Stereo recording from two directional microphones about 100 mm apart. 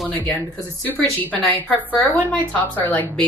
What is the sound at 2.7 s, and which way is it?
Speech, 20° left (ahead or behind).